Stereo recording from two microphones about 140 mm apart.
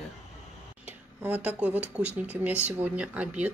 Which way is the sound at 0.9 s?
10° right (ahead or behind).